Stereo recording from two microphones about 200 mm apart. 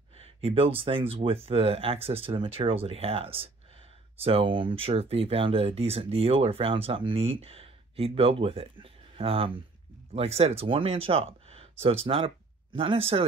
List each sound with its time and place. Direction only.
0.2 s speech: 30° right (ahead or behind)